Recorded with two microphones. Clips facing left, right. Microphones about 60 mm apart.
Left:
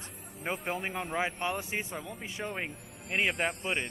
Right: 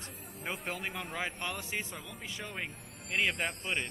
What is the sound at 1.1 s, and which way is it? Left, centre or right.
Speech, centre.